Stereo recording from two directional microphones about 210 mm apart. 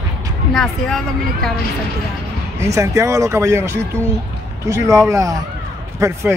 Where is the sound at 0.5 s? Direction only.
Centre (ahead or behind).